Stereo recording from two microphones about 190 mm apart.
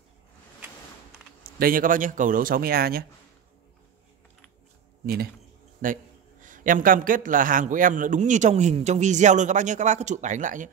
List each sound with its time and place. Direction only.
1.4 s a man's voice: 50° right (ahead or behind)
5.0 s a man's voice: 55° right (ahead or behind)